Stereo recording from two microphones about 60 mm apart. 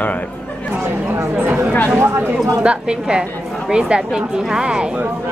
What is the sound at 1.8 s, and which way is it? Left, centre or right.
Speech, right.